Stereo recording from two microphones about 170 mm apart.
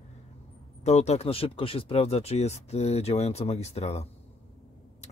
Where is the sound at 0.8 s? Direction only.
40° left (ahead or behind).